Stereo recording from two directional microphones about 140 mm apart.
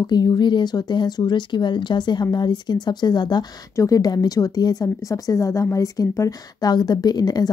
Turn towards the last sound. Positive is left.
turn(degrees=30)  # may be behind; listen again after turning